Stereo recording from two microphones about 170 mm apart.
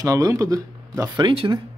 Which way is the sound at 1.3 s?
35° right (ahead or behind).